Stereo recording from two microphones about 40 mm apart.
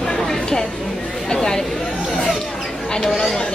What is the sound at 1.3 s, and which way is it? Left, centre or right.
Chatter, centre.